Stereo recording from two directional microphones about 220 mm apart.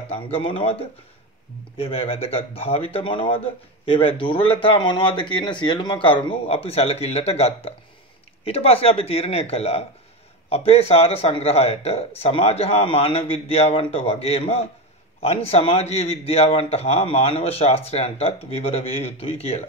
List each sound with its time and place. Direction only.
0.1 s speech: 25° left (ahead or behind)